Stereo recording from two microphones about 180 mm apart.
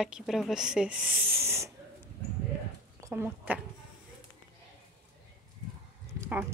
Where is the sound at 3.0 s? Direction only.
15° right (ahead or behind).